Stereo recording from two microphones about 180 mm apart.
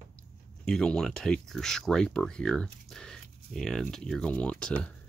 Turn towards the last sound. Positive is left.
turn(degrees=5)  # may be behind; listen again after turning